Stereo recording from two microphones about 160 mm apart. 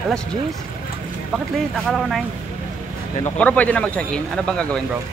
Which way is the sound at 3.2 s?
10° left (ahead or behind).